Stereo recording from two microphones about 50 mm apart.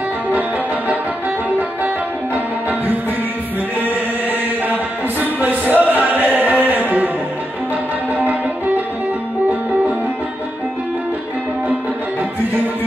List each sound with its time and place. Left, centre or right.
0.3 s music: right
3.8 s chant: right
5.2 s music: right